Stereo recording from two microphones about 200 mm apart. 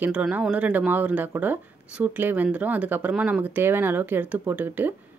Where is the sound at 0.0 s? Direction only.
5° right (ahead or behind).